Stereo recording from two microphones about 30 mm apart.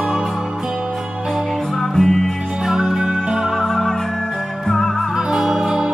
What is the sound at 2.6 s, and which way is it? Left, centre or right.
Music, centre.